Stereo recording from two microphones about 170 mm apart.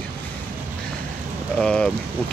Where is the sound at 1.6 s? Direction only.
5° left (ahead or behind).